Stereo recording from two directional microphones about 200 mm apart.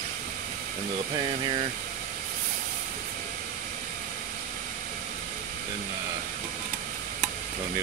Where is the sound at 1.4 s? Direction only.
25° right (ahead or behind).